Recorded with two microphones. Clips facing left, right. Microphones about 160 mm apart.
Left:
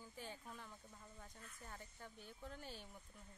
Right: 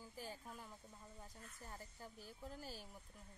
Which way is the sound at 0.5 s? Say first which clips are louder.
Right 1 dB; 10° right (ahead or behind).